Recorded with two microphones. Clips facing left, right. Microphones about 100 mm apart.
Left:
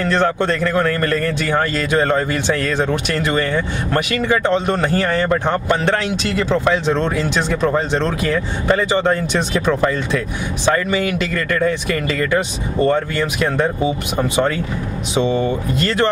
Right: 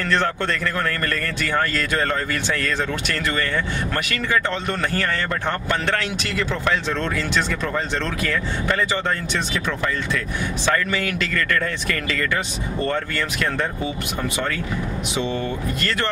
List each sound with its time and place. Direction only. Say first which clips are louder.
0.0 s a man's voice: left 5 dB; 20° left (ahead or behind)